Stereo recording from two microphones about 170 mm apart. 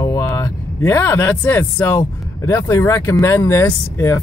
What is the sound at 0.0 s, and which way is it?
Speech, 20° left (ahead or behind).